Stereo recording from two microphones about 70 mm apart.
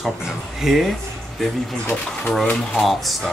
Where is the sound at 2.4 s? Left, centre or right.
Centre.